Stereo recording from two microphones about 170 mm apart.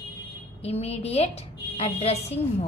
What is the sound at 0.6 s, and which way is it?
A woman's voice, 40° left (ahead or behind).